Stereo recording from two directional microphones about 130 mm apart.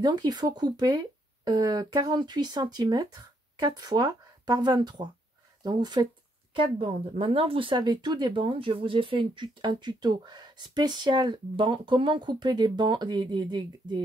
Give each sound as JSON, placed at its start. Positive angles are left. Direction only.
{"t": 0.0, "sound": "speech", "side_deg": -35}
{"t": 6.5, "sound": "speech", "side_deg": -45}